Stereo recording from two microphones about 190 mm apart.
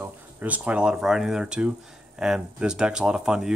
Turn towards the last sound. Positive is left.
turn(degrees=-5)  # may be behind; listen again after turning